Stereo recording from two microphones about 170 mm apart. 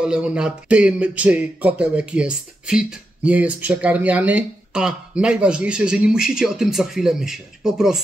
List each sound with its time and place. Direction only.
0.0 s speech: 5° right (ahead or behind)